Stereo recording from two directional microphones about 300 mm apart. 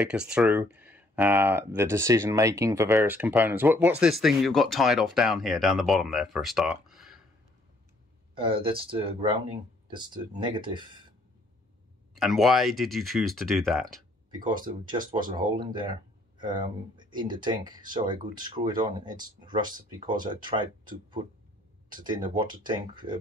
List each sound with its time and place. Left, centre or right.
0.0 s speech: centre
8.4 s speech: centre
12.2 s speech: centre
14.4 s speech: centre